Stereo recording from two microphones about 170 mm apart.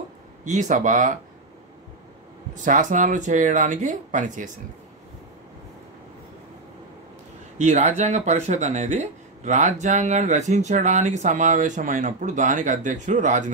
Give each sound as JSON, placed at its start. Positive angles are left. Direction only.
{"t": 0.5, "sound": "speech", "side_deg": -45}
{"t": 2.5, "sound": "speech", "side_deg": -45}
{"t": 7.5, "sound": "speech", "side_deg": -45}